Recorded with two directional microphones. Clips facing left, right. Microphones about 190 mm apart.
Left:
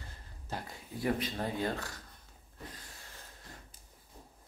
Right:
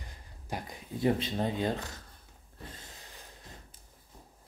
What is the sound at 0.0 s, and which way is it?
Speech, 15° right (ahead or behind).